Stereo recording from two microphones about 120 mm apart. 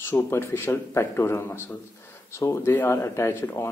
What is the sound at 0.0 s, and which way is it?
Speech, 20° left (ahead or behind).